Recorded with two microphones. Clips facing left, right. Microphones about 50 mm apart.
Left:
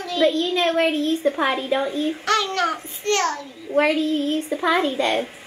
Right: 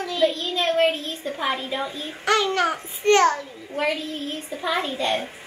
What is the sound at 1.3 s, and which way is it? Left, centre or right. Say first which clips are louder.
Speech: left 5 dB; left.